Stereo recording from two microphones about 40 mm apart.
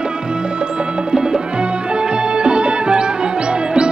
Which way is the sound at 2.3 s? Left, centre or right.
Right.